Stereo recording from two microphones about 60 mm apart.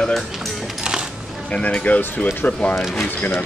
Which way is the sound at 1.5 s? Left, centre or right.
Centre.